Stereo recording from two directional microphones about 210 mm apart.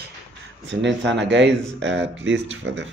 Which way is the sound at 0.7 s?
60° right (ahead or behind).